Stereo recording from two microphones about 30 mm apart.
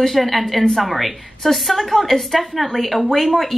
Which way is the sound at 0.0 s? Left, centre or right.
Centre.